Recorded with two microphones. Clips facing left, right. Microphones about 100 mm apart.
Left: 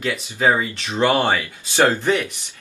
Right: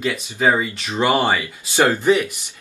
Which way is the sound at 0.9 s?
10° right (ahead or behind).